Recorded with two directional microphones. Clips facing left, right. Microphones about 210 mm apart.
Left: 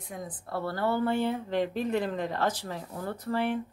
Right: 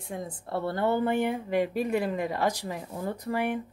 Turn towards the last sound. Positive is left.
turn(degrees=-15)  # may be behind; listen again after turning